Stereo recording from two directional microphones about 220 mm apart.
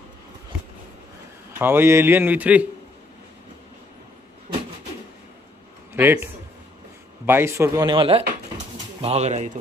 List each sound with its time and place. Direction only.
1.6 s a man's voice: 10° right (ahead or behind)
5.9 s a man's voice: 10° right (ahead or behind); by 9.5 s 30° right (ahead or behind)